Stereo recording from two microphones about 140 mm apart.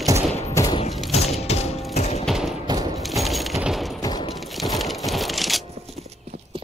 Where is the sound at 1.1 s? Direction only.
50° left (ahead or behind).